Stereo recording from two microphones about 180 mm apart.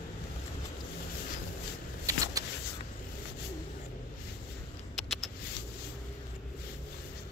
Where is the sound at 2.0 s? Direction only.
20° right (ahead or behind).